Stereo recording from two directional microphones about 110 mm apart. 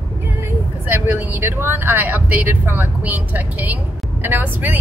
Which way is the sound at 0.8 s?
20° right (ahead or behind).